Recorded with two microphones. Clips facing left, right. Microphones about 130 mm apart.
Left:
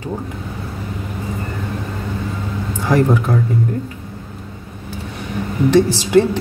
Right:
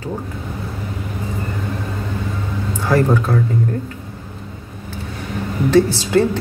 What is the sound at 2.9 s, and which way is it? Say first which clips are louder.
Speech: left 1 dB; 15° left (ahead or behind).